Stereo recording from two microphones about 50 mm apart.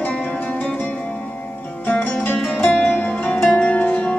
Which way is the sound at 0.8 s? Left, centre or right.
Left.